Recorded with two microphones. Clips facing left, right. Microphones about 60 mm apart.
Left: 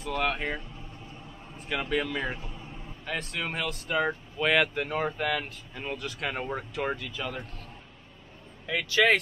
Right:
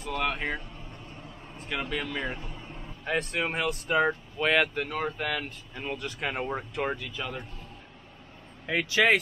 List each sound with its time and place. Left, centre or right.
0.0 s speech: centre
1.1 s vehicle: centre
3.1 s speech: right
3.5 s speech: centre
8.6 s speech: right